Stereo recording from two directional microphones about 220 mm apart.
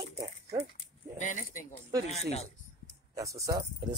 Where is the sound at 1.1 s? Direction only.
35° left (ahead or behind).